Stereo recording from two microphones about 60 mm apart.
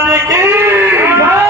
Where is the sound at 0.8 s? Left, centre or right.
Right.